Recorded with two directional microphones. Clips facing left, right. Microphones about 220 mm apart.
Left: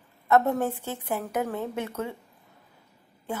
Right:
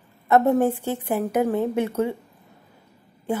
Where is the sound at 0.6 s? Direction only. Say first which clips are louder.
Right 7 dB; 15° right (ahead or behind).